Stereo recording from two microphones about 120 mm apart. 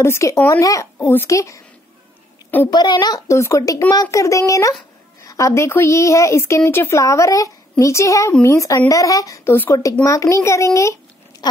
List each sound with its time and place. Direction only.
0.0 s a woman's voice: 25° left (ahead or behind)
2.7 s a child's voice: 35° left (ahead or behind)